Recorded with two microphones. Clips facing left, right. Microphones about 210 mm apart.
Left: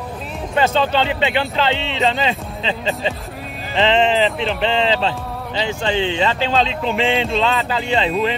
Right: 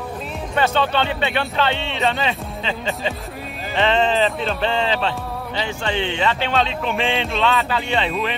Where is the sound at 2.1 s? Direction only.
25° left (ahead or behind).